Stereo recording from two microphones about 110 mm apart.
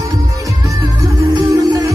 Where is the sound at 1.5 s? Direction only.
30° right (ahead or behind).